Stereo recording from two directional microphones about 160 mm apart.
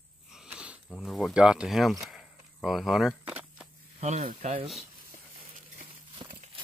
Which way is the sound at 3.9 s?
45° right (ahead or behind).